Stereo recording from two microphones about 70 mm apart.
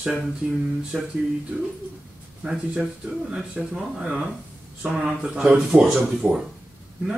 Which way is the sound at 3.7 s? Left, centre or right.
Centre.